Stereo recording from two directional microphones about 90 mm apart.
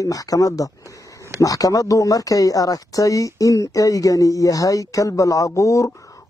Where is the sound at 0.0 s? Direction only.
40° left (ahead or behind).